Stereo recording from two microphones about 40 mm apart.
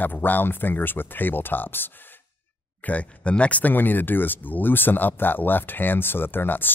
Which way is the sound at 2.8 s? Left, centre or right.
Left.